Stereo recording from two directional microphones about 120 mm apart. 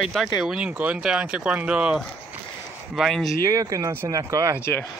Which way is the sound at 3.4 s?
30° right (ahead or behind).